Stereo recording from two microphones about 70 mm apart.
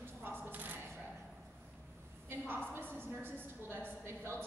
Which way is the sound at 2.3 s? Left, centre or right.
Right.